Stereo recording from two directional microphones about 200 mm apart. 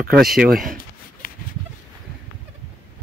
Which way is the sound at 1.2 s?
45° left (ahead or behind).